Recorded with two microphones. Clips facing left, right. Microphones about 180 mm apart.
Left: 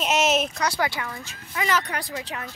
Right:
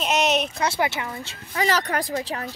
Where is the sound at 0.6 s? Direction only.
25° right (ahead or behind).